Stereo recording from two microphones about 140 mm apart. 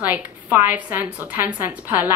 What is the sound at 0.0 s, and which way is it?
A woman's voice, 15° right (ahead or behind).